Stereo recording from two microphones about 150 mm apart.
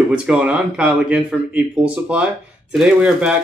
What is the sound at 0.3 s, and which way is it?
Speech, 5° right (ahead or behind).